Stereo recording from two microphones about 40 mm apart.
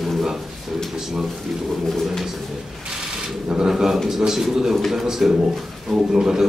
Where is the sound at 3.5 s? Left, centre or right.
Centre.